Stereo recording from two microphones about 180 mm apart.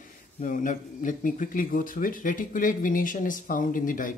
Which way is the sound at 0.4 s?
45° left (ahead or behind).